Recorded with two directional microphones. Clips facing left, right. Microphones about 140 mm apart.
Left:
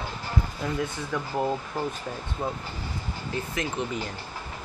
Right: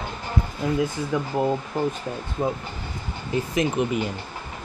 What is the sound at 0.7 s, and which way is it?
Speech, 10° right (ahead or behind).